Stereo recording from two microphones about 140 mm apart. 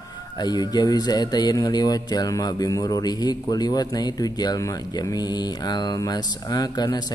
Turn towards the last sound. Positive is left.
turn(degrees=30)  # may be behind; listen again after turning